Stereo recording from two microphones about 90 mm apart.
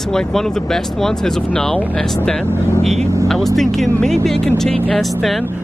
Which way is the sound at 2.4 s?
30° right (ahead or behind).